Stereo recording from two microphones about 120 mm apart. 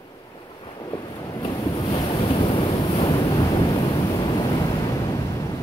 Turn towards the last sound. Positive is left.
turn(degrees=30)  # may be behind; listen again after turning